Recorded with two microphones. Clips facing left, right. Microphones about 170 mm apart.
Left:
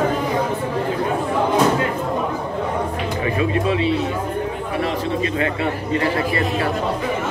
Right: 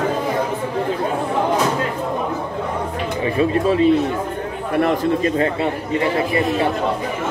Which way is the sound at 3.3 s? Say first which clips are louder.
Right 4 dB; 40° right (ahead or behind).